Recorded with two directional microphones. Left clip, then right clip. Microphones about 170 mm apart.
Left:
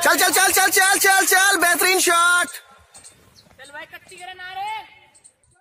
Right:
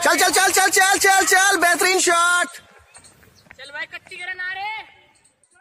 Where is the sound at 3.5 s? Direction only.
65° left (ahead or behind).